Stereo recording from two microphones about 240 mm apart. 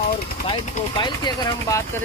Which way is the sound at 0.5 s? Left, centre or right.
Centre.